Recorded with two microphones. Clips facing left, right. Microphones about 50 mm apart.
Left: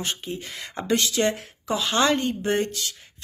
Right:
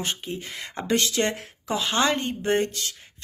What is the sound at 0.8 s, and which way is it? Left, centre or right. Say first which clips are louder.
Speech: left 1 dB; right.